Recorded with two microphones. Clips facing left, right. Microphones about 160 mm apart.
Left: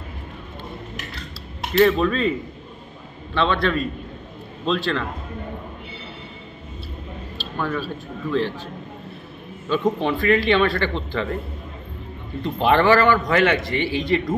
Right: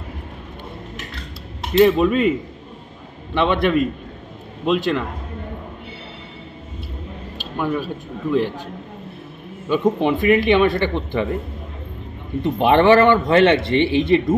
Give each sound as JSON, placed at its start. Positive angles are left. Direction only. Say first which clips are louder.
{"t": 1.7, "sound": "a man's voice", "louder": "right 3 dB", "side_deg": -20}
{"t": 3.3, "sound": "speech", "louder": "right 4 dB", "side_deg": -20}
{"t": 7.5, "sound": "speech", "louder": "right 3 dB", "side_deg": -15}
{"t": 9.7, "sound": "speech", "louder": "right 3 dB", "side_deg": -15}
{"t": 12.4, "sound": "a man's voice", "louder": "right 3 dB", "side_deg": -20}